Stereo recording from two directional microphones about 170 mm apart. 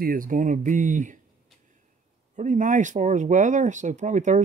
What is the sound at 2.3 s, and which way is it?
Speech, 50° right (ahead or behind).